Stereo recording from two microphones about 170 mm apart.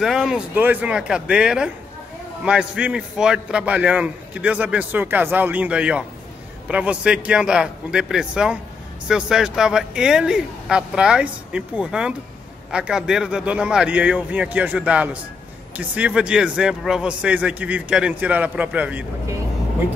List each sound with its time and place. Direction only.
0.0 s a man's voice: 5° right (ahead or behind)